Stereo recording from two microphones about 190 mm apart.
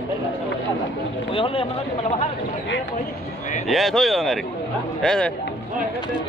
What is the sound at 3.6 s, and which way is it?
Speech, centre (ahead or behind).